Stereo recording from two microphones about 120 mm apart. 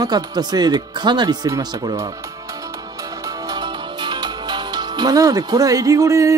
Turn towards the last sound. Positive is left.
turn(degrees=-25)  # may be behind; listen again after turning